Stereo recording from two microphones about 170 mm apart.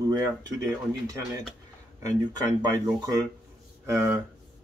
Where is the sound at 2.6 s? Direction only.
20° right (ahead or behind).